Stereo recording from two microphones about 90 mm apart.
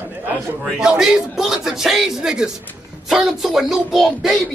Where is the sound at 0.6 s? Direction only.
5° right (ahead or behind).